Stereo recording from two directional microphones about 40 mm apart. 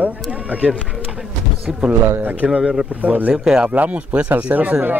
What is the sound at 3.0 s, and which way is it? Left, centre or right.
Speech, right.